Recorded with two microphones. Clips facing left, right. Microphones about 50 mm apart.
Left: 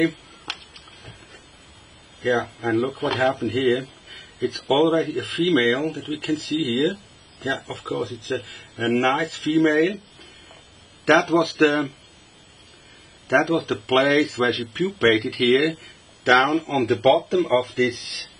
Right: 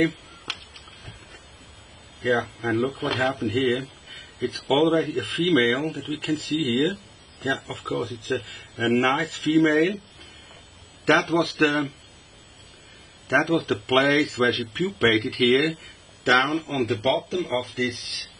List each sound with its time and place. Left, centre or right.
0.1 s a sound: centre
2.2 s speech: centre
6.1 s speech: right
6.5 s speech: centre
11.1 s speech: centre
13.3 s speech: centre